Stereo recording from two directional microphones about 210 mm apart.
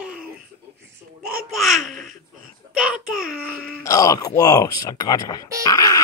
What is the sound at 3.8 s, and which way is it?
Speech, 15° left (ahead or behind).